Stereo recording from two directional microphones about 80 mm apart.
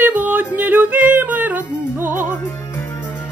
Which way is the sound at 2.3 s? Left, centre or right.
Left.